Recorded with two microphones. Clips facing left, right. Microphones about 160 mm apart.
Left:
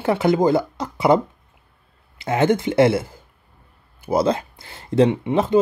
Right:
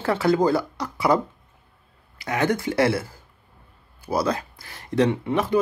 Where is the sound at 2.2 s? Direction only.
25° left (ahead or behind).